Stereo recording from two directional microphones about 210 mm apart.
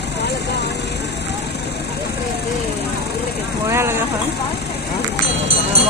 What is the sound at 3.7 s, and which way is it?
Speech, 10° right (ahead or behind).